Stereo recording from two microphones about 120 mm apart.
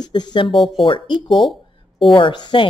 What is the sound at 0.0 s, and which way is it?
Speech, 35° left (ahead or behind).